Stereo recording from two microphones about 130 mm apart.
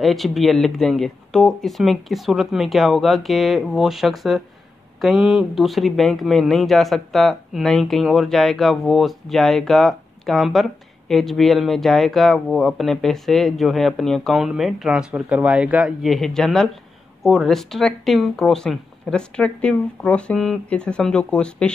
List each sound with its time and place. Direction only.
0.0 s speech: centre (ahead or behind)